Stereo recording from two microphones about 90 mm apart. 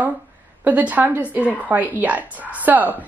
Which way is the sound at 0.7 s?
20° right (ahead or behind).